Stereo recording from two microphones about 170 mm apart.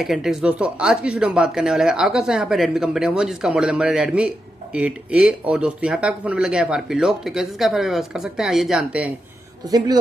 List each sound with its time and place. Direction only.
0.0 s speech: centre (ahead or behind)
9.7 s a man's voice: 25° right (ahead or behind)